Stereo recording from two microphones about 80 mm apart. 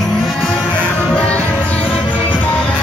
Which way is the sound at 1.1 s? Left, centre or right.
Centre.